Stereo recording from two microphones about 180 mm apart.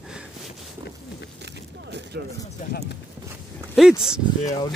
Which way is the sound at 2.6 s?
45° left (ahead or behind).